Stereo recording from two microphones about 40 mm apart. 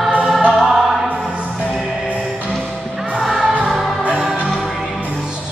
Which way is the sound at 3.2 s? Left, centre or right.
Centre.